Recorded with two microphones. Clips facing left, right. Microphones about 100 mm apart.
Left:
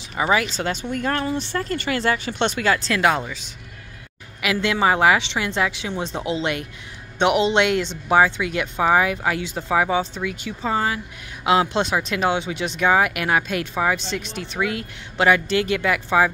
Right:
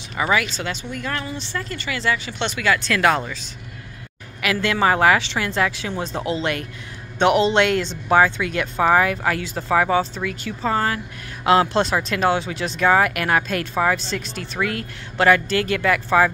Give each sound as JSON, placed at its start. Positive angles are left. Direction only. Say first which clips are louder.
{"t": 0.1, "sound": "speech", "louder": "left 1 dB", "side_deg": 20}
{"t": 0.4, "sound": "speech", "louder": "left 1 dB", "side_deg": 40}
{"t": 2.9, "sound": "a woman's voice", "louder": "right 1 dB", "side_deg": 15}